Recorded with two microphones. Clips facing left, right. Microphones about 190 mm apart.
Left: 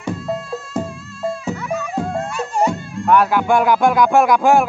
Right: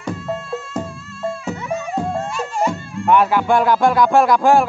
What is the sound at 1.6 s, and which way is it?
Music, 25° right (ahead or behind).